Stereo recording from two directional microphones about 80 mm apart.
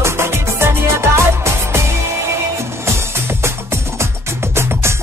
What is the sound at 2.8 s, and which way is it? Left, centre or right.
Music, right.